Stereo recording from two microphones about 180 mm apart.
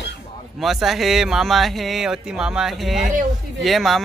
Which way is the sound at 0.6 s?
Centre (ahead or behind).